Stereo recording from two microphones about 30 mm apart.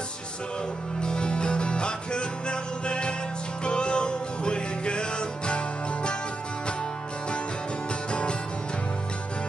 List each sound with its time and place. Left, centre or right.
1.0 s music: left
8.1 s music: left